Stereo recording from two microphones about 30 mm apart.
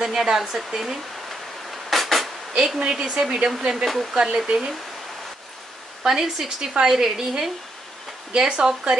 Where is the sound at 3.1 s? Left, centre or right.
Right.